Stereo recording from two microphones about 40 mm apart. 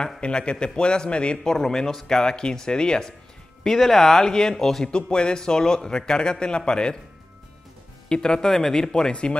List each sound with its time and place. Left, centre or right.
0.2 s a man's voice: left
3.6 s a man's voice: centre
4.9 s a man's voice: left
8.1 s a man's voice: left